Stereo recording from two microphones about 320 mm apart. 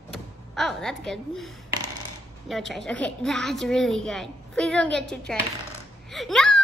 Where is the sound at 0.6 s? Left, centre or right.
Centre.